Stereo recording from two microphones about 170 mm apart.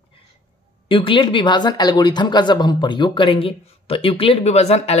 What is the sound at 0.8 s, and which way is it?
Speech, 30° left (ahead or behind).